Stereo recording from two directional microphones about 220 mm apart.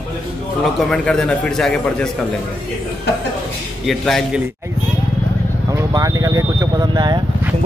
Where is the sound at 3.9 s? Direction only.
Centre (ahead or behind).